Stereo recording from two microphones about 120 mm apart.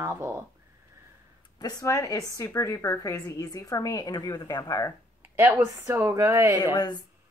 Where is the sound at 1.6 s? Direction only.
30° left (ahead or behind).